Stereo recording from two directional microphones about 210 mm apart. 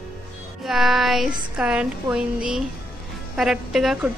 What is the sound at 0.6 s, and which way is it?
Music, centre (ahead or behind).